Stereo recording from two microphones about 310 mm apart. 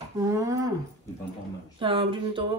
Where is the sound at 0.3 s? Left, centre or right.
Centre.